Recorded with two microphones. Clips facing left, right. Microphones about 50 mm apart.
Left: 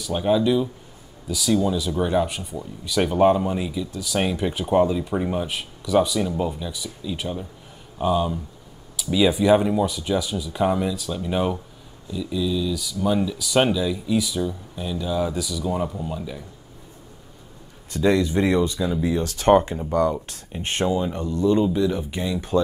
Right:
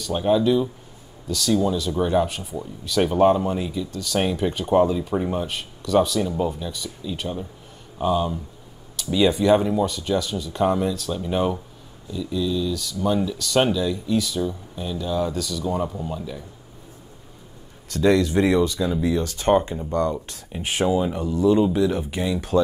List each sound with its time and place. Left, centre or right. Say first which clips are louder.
0.0 s speech: right 1 dB; centre
17.9 s speech: right 1 dB; centre
18.3 s speech: right 1 dB; centre
19.2 s speech: left 4 dB; left
19.8 s speech: left 2 dB; centre
20.5 s speech: right 2 dB; centre